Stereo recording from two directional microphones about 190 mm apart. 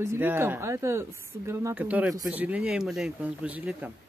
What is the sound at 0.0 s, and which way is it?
Speech, 15° right (ahead or behind).